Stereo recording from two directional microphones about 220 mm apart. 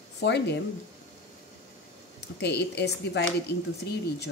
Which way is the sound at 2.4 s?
50° left (ahead or behind).